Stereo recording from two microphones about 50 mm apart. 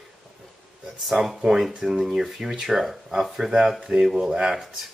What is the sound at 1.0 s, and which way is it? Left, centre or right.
Speech, centre.